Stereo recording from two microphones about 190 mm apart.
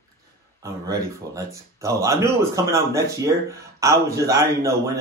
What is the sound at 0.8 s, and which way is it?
Speech, 20° right (ahead or behind).